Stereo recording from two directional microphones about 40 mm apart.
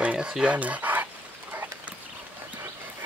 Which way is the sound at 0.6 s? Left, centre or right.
Right.